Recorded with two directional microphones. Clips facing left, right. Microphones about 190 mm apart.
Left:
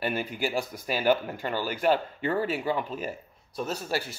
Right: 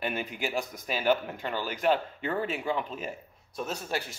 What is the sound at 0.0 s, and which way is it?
Speech, 5° left (ahead or behind).